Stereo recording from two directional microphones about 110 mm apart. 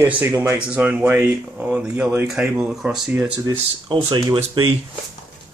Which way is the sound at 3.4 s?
40° right (ahead or behind).